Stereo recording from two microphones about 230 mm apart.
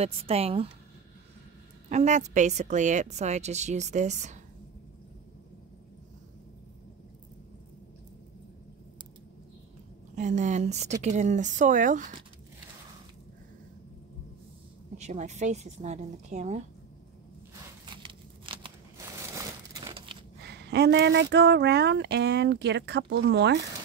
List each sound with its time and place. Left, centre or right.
0.0 s a woman's voice: right
1.9 s a woman's voice: right
10.1 s a woman's voice: right
15.0 s a woman's voice: right
17.8 s a sound: right
19.3 s crumpling: centre
20.4 s speech: right